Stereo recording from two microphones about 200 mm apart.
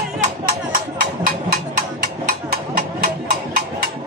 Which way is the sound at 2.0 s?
50° right (ahead or behind).